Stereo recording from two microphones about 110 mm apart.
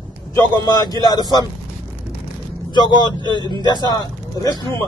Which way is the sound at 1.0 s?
40° left (ahead or behind).